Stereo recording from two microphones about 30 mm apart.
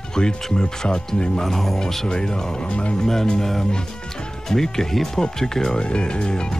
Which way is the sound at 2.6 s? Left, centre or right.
Left.